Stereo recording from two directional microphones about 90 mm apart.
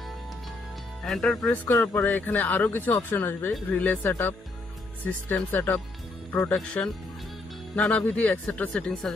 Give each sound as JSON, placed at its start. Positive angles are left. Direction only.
{"t": 1.0, "sound": "speech", "side_deg": 5}
{"t": 1.8, "sound": "speech", "side_deg": 35}
{"t": 2.0, "sound": "speech", "side_deg": 20}
{"t": 6.5, "sound": "speech", "side_deg": 10}